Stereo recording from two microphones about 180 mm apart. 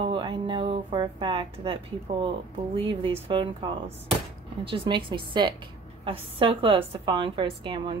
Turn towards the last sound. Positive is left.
turn(degrees=-25)  # may be behind; listen again after turning